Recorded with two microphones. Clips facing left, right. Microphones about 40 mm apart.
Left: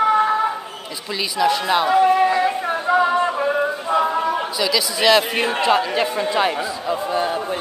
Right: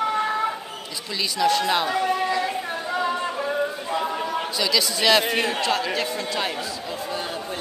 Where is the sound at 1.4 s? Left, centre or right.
Centre.